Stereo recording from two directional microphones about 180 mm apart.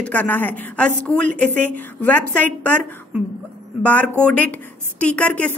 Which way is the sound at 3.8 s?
10° left (ahead or behind).